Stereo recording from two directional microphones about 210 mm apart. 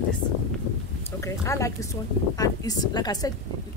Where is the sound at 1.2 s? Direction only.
15° left (ahead or behind).